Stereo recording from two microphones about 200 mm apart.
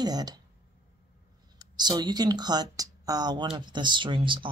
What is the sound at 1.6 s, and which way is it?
Speech, 20° right (ahead or behind).